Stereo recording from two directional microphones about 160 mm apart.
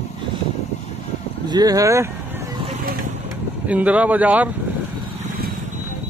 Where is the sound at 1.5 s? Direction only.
25° right (ahead or behind).